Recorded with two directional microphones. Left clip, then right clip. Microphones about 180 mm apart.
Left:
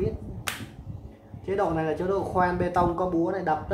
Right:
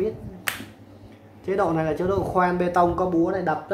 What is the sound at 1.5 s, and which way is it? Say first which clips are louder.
Speech: right 3 dB; 35° right (ahead or behind).